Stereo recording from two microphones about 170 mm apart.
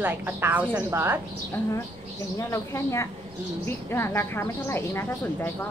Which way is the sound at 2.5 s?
15° left (ahead or behind).